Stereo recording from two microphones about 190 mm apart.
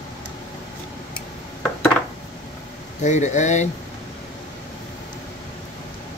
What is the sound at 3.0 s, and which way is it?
Speech, 40° left (ahead or behind).